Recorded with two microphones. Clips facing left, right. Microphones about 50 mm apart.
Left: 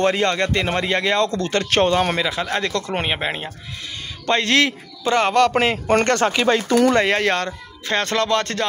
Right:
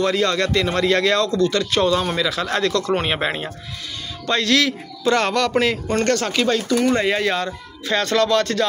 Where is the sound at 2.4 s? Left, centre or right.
Centre.